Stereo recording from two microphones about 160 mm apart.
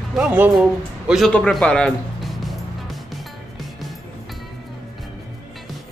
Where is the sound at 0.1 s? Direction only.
10° right (ahead or behind); by 1.9 s 5° left (ahead or behind).